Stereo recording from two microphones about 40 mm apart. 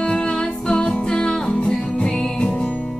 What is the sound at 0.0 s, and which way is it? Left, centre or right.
Music, left.